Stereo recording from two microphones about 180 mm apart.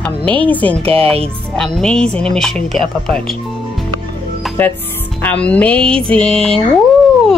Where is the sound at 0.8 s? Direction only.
30° right (ahead or behind).